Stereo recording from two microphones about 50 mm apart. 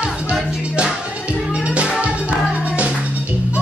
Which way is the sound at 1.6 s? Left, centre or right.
Right.